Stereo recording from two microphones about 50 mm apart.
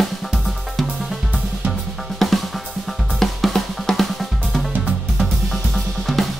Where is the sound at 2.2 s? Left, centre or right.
Centre.